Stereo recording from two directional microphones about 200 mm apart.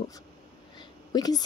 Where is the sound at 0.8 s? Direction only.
20° left (ahead or behind).